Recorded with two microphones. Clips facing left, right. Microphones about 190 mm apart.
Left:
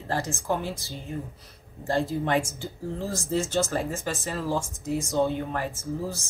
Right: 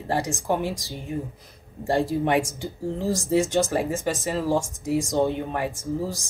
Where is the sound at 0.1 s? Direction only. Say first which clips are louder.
Right 3 dB; 15° right (ahead or behind).